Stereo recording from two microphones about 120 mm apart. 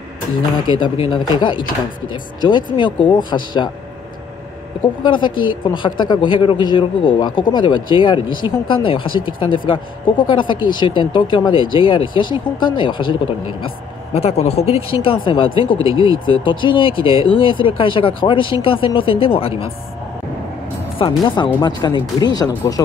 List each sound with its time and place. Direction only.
0.7 s speech: 45° left (ahead or behind)
5.0 s speech: 40° left (ahead or behind)
14.1 s speech: 60° left (ahead or behind)
21.5 s speech: 35° left (ahead or behind)